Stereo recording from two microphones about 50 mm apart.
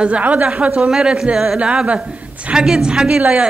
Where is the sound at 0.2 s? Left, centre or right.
Right; by 1.6 s centre.